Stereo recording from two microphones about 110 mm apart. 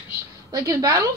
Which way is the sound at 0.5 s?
30° right (ahead or behind).